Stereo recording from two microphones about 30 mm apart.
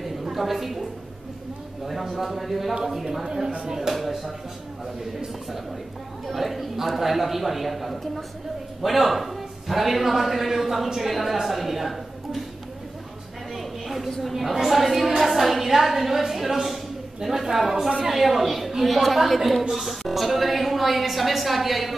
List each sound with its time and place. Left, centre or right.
0.0 s a sound: centre
1.9 s a woman's voice: centre
3.3 s speech: centre
3.9 s a woman's voice: centre
6.2 s a woman's voice: centre
13.6 s a sound: centre
14.2 s a woman's voice: centre